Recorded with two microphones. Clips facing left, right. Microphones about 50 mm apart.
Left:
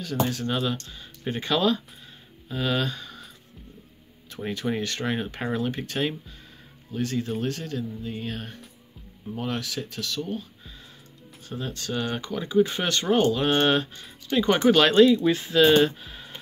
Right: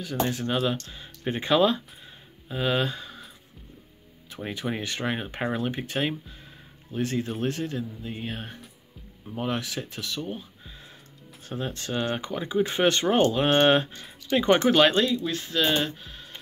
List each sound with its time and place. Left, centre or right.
0.3 s speech: centre
4.3 s a sound: centre
4.6 s speech: centre
11.4 s speech: right; by 15.0 s centre
15.0 s speech: centre